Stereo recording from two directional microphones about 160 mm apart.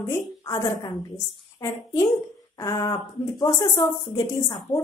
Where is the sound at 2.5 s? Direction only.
20° left (ahead or behind).